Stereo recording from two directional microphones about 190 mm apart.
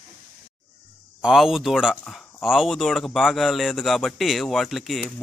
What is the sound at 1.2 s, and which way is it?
Speech, centre (ahead or behind).